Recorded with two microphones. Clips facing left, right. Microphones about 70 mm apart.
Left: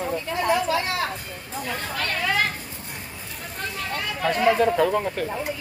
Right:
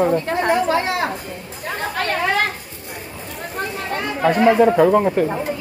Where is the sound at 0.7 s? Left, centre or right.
Right.